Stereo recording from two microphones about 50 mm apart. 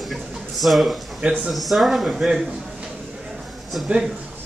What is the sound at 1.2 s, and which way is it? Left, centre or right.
Speech, centre.